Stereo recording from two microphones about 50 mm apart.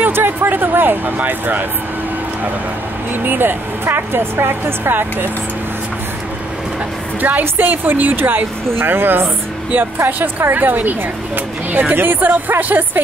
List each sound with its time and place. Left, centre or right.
0.0 s speech: right
3.3 s speech: right
7.2 s speech: right